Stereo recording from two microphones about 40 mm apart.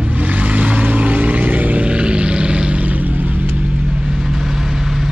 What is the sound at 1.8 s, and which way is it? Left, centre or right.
Music, right.